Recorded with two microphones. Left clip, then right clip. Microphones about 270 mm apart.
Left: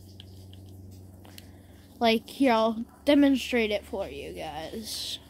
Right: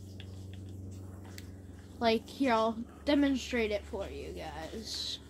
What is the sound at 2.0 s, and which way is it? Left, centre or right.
A woman's voice, left.